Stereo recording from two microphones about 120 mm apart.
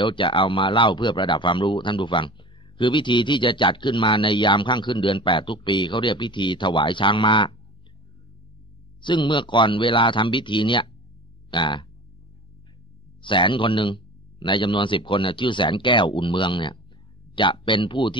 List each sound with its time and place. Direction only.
0.0 s speech: 45° left (ahead or behind)
9.0 s speech: 40° left (ahead or behind)
11.5 s frog: 40° left (ahead or behind)
13.2 s speech: 45° left (ahead or behind)